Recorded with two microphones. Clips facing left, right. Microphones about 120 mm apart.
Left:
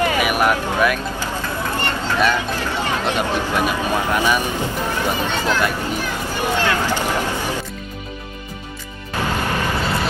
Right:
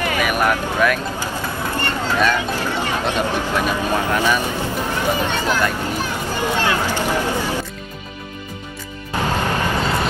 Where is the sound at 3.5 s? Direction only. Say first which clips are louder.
Even; 15° left (ahead or behind).